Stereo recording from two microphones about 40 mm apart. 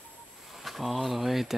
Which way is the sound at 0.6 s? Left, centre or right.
Centre.